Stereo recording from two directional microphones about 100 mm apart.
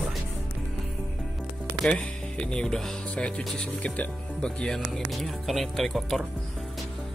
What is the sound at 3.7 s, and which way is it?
Speech, 15° left (ahead or behind).